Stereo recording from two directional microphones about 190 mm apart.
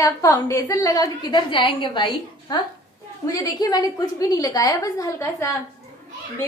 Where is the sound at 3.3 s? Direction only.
20° left (ahead or behind).